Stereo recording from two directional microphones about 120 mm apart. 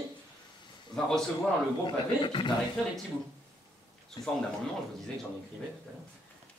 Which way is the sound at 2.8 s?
5° left (ahead or behind).